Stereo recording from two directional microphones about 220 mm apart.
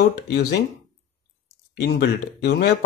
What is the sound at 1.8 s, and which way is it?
Speech, 50° left (ahead or behind).